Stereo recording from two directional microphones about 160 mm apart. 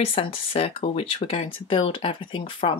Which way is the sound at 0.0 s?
35° left (ahead or behind).